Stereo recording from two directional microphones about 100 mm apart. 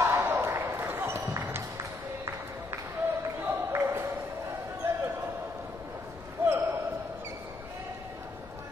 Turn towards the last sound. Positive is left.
turn(degrees=-25)  # may be behind; listen again after turning